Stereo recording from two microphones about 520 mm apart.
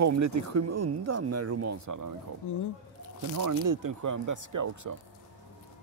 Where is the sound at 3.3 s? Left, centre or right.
Right.